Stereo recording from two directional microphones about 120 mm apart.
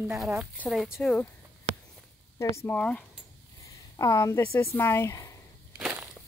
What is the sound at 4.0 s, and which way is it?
Speech, 25° left (ahead or behind).